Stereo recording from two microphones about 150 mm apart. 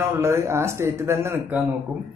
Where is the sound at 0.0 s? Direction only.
15° right (ahead or behind).